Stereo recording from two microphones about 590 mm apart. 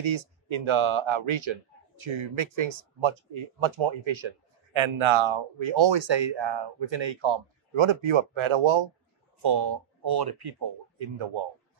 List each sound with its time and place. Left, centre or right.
0.0 s speech: right
9.4 s speech: right